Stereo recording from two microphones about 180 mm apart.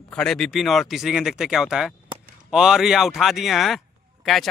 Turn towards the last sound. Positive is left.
turn(degrees=0)  # may be behind; listen again after turning